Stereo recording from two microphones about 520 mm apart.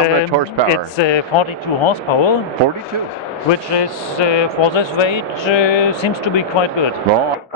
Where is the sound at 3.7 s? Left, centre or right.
Left.